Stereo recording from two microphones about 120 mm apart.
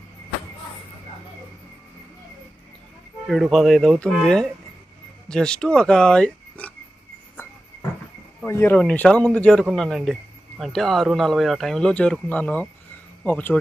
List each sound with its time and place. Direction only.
3.3 s speech: centre (ahead or behind)
8.5 s speech: 20° left (ahead or behind)